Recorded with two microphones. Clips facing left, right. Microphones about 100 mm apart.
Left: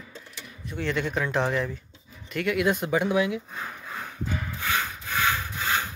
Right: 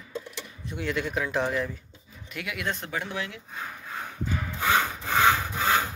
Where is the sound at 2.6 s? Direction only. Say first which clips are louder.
Left 5 dB; 10° left (ahead or behind).